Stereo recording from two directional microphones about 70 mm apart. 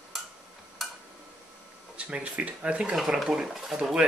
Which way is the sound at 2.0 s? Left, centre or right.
Centre.